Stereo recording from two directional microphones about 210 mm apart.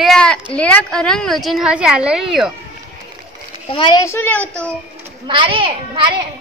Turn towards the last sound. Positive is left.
turn(degrees=-25)  # may be behind; listen again after turning